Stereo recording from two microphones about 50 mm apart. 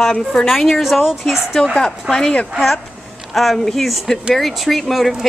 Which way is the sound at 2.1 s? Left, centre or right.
Centre.